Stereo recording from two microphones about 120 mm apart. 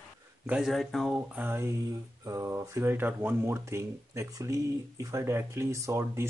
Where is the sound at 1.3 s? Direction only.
20° right (ahead or behind).